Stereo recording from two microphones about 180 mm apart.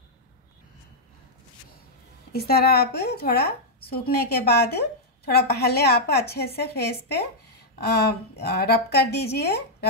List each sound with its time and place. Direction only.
2.3 s speech: 60° left (ahead or behind)